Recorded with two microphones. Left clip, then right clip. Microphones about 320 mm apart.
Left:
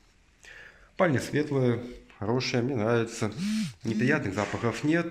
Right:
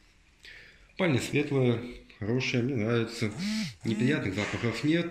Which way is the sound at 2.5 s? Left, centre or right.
Left.